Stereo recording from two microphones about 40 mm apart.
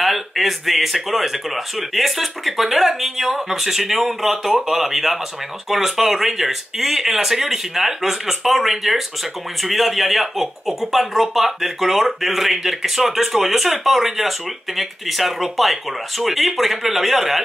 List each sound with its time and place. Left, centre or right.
0.0 s speech: centre